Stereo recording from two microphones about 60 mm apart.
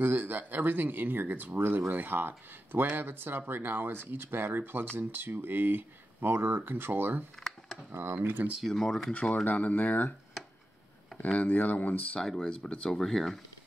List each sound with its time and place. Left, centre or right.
0.0 s speech: right
7.3 s computer keyboard: centre
7.9 s speech: right
8.7 s speech: centre
9.3 s speech: left
11.3 s speech: left
12.2 s speech: centre